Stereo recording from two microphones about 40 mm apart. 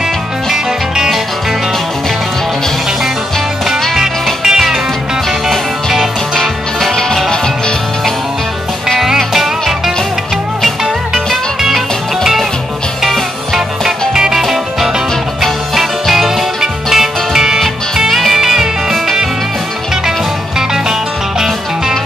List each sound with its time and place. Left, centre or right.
3.9 s music: centre
6.3 s music: centre
9.0 s music: centre
11.6 s music: centre
13.8 s music: centre